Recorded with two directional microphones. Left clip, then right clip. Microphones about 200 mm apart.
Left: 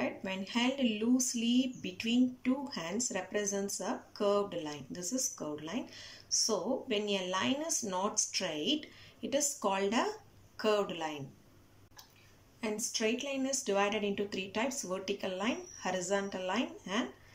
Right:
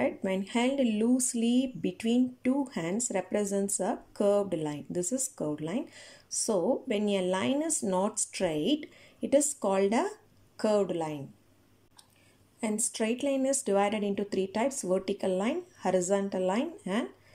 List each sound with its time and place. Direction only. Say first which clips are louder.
0.0 s speech: right 7 dB; 35° right (ahead or behind)
12.5 s speech: right 4 dB; 35° right (ahead or behind)